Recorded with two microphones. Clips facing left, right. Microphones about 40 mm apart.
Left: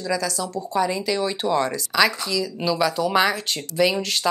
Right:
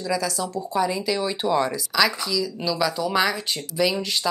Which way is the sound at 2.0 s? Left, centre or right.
Centre.